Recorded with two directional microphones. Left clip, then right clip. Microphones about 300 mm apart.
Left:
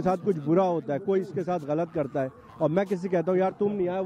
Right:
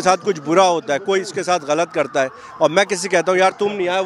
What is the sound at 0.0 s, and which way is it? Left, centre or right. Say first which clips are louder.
Speech: right 10 dB; centre.